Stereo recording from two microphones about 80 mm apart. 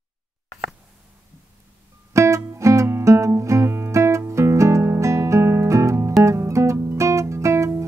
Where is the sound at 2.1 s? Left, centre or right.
Right.